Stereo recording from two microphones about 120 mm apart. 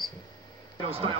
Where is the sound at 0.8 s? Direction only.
50° right (ahead or behind).